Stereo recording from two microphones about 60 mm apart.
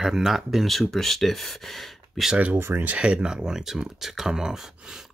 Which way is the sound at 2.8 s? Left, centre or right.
Centre.